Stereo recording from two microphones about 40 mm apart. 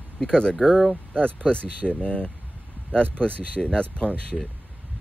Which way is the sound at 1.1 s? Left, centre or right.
Left.